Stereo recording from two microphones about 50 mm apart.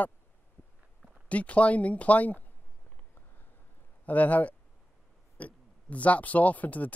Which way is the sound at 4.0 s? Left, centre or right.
Left.